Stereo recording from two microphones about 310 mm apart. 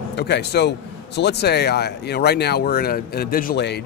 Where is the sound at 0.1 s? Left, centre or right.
Left.